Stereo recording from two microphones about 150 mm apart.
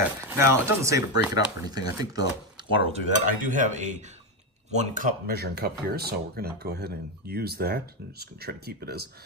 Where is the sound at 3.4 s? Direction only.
60° right (ahead or behind).